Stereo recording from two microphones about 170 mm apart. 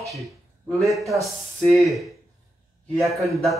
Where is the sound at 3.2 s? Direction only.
Centre (ahead or behind).